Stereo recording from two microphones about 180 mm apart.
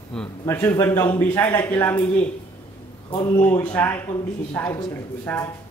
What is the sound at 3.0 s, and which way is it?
Speech, 25° left (ahead or behind).